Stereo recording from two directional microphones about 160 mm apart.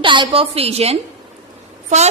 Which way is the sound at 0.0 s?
30° right (ahead or behind).